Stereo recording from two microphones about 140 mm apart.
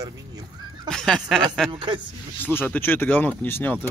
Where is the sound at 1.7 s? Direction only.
35° right (ahead or behind).